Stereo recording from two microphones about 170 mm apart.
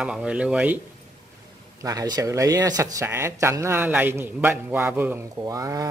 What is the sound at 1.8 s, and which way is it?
A man's voice, 20° right (ahead or behind).